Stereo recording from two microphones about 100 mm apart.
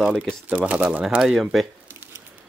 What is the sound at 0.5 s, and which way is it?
Speech, 15° right (ahead or behind).